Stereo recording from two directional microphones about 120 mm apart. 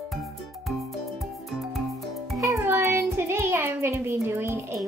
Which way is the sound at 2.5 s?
20° right (ahead or behind).